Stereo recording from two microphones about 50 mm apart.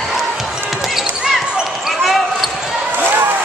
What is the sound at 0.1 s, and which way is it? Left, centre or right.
Basketball bounce, centre.